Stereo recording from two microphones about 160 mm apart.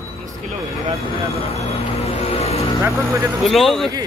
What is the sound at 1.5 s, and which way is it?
Vehicle, 40° left (ahead or behind).